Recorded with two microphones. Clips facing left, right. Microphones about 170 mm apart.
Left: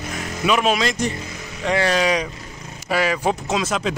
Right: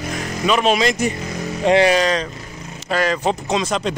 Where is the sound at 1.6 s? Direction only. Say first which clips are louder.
Right 6 dB; 20° right (ahead or behind).